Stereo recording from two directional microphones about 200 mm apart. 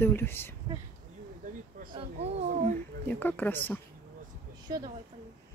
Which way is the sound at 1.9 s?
30° right (ahead or behind).